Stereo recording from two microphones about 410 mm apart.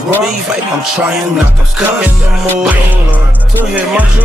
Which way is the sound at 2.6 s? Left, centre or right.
Centre.